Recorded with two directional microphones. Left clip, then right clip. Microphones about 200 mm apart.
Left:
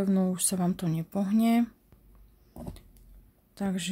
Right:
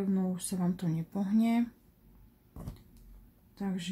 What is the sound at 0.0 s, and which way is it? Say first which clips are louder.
Speech: left 6 dB; 45° left (ahead or behind).